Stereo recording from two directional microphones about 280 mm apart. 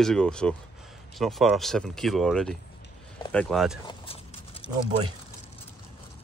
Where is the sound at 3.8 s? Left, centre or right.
Centre.